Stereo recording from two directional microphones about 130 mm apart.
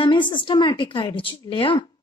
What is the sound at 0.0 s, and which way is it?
Speech, 40° left (ahead or behind).